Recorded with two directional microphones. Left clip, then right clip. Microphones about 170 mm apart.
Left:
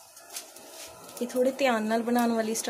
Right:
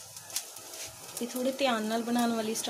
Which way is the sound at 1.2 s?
20° left (ahead or behind).